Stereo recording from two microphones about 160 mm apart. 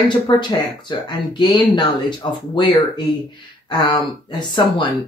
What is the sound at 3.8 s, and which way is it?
Speech, 30° left (ahead or behind).